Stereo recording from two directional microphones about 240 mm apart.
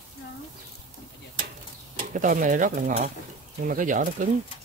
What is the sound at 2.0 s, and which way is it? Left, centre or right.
Speech, right.